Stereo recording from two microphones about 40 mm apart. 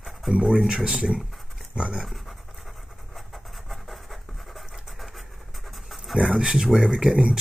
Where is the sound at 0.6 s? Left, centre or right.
Centre.